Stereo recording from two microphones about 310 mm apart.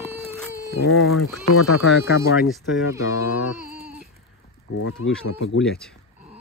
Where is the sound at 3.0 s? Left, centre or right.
Left.